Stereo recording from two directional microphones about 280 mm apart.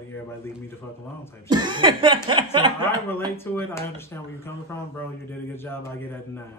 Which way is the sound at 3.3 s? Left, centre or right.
Centre.